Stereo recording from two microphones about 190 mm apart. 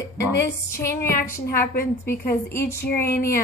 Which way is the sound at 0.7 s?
15° left (ahead or behind).